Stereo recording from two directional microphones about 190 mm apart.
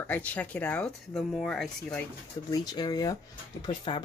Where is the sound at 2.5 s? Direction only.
20° left (ahead or behind).